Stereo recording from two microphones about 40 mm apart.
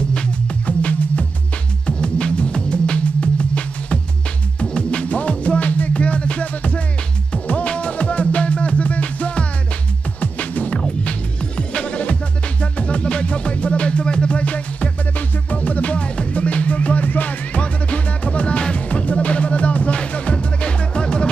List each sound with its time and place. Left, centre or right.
0.7 s music: left
1.9 s music: left
11.1 s music: left
20.0 s music: left